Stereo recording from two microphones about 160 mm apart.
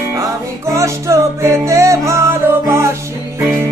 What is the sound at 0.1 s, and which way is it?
Music, 20° right (ahead or behind).